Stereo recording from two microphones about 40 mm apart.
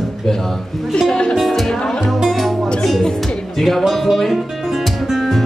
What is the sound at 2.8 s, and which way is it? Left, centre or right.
Music, centre.